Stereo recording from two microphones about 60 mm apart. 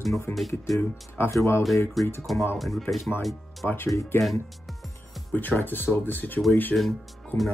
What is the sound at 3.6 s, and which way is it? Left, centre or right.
Speech, left.